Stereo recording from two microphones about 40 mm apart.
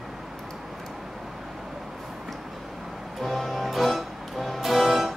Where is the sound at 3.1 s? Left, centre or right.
Centre.